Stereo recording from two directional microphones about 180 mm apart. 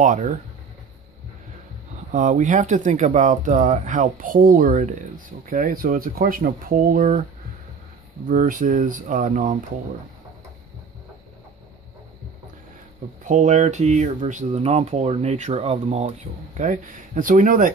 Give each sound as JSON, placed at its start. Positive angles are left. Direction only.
{"t": 0.0, "sound": "speech", "side_deg": -45}
{"t": 2.0, "sound": "speech", "side_deg": -45}
{"t": 8.3, "sound": "speech", "side_deg": -45}
{"t": 13.3, "sound": "speech", "side_deg": -40}
{"t": 16.5, "sound": "speech", "side_deg": -45}